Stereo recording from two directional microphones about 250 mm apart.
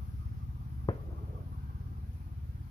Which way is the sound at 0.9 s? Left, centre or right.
Centre.